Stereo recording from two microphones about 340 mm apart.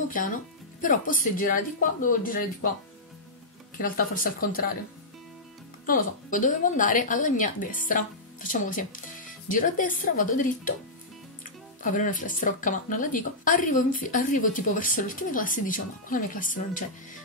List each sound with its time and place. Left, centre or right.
0.1 s speech: left
3.7 s speech: left
5.9 s speech: left